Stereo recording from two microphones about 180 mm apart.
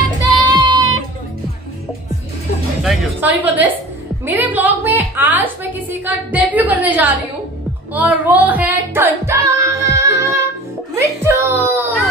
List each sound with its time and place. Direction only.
0.4 s child singing: 25° right (ahead or behind)
2.8 s music: 5° right (ahead or behind)
4.3 s a woman's voice: 10° right (ahead or behind)
7.9 s music: 10° right (ahead or behind)
11.0 s a woman's voice: 10° right (ahead or behind)